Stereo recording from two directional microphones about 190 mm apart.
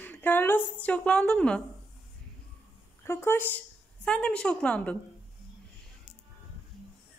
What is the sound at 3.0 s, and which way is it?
A woman's voice, 10° left (ahead or behind).